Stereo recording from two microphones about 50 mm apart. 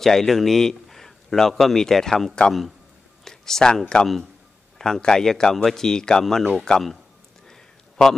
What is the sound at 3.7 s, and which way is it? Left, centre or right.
Speech, centre.